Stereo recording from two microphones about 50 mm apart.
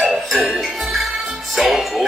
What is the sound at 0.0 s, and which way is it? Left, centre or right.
Music, centre.